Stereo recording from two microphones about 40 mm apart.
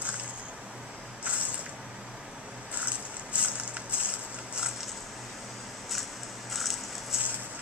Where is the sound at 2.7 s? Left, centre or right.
Right.